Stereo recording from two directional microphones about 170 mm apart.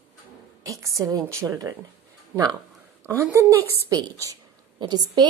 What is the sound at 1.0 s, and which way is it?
Speech, 20° right (ahead or behind).